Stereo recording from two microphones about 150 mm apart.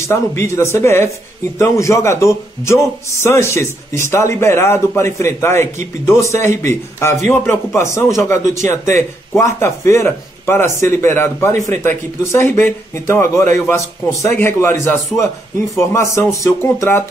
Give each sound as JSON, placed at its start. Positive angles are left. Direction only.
{"t": 0.0, "sound": "a man's voice", "side_deg": 20}